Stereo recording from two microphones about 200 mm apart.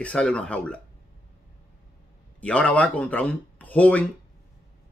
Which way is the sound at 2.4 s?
5° left (ahead or behind).